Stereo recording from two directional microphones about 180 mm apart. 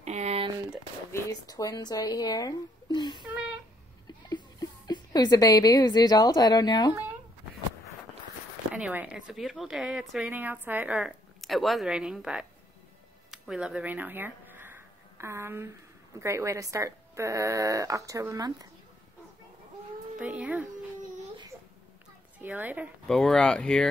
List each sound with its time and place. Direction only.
0.0 s a sound: 40° right (ahead or behind)
1.1 s speech: 20° left (ahead or behind)
4.3 s a woman's voice: 25° left (ahead or behind)
8.7 s a woman's voice: 5° right (ahead or behind)
13.3 s a sound: 5° right (ahead or behind)
16.2 s a woman's voice: 15° right (ahead or behind)
20.2 s a woman's voice: 10° right (ahead or behind)
22.4 s a woman's voice: 10° right (ahead or behind)
23.0 s a woman's voice: 5° left (ahead or behind)